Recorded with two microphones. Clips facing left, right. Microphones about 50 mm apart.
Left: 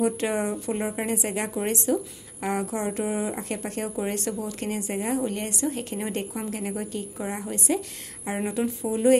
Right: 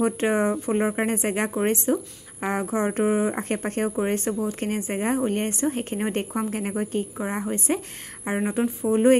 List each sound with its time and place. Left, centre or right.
0.0 s speech: right